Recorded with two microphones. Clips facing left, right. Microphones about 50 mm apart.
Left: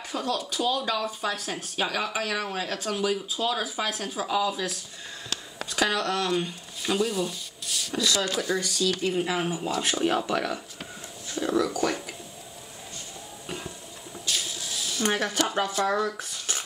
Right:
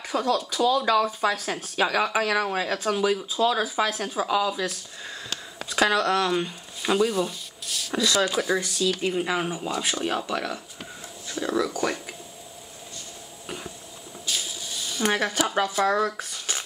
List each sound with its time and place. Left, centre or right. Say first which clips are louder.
0.3 s speech: right 5 dB; centre
5.8 s speech: right 4 dB; centre
14.2 s a sound: even; centre
15.6 s speech: right 4 dB; centre